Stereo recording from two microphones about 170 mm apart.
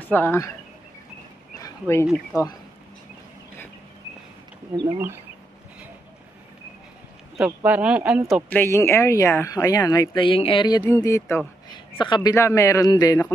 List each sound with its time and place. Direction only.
0.1 s speech: 15° left (ahead or behind)
1.6 s a sound: 15° left (ahead or behind)
4.7 s speech: 25° right (ahead or behind)
7.3 s speech: 5° right (ahead or behind)
8.5 s speech: 15° left (ahead or behind)
10.9 s speech: 15° left (ahead or behind)
11.7 s a man's voice: 25° left (ahead or behind)